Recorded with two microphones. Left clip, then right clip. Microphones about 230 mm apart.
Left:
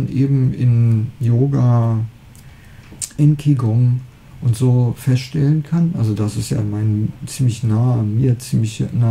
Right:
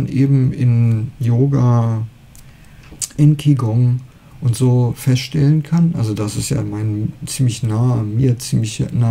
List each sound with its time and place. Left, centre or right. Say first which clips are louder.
0.1 s speech: right 3 dB; right
3.0 s speech: right 2 dB; right